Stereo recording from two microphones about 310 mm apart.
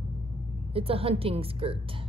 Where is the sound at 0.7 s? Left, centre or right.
Centre.